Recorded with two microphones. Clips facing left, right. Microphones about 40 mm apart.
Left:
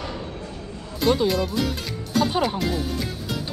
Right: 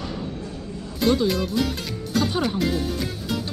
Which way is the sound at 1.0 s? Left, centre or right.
Centre.